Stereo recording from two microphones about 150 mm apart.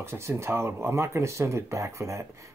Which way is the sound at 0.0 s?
15° right (ahead or behind).